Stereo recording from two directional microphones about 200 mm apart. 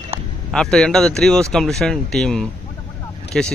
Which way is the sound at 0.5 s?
5° left (ahead or behind).